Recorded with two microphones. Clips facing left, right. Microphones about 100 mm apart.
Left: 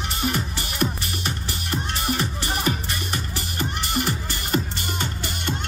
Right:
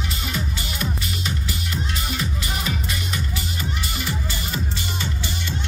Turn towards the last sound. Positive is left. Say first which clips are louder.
# left 3 dB
turn(degrees=50)  # may be behind; listen again after turning